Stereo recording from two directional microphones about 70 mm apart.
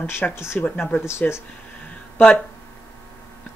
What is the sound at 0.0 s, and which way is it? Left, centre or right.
Speech, left.